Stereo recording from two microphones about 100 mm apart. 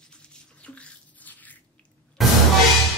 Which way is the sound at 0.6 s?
10° left (ahead or behind).